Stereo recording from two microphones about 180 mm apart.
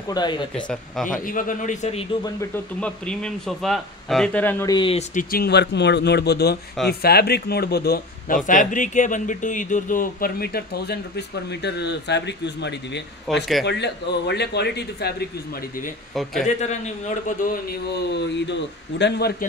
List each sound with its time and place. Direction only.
0.1 s speech: 25° left (ahead or behind)
1.2 s speech: 50° left (ahead or behind)
2.8 s speech: 5° left (ahead or behind)
4.7 s speech: 30° left (ahead or behind)
5.1 s a man's voice: 55° left (ahead or behind)
8.5 s speech: 45° left (ahead or behind); by 13.0 s 75° left (ahead or behind)
13.3 s speech: centre (ahead or behind)
13.7 s speech: 70° left (ahead or behind)
16.4 s a man's voice: 40° left (ahead or behind); by 19.3 s 70° left (ahead or behind)